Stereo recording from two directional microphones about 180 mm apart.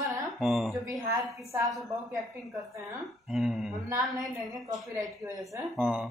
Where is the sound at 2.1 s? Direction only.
15° right (ahead or behind).